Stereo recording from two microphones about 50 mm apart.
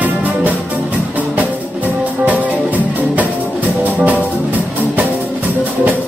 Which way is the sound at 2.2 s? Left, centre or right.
Right.